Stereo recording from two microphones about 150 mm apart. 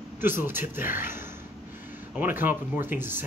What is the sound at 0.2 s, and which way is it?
A man's voice, 15° right (ahead or behind).